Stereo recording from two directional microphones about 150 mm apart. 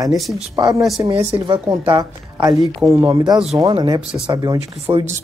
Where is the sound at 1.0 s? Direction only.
35° right (ahead or behind).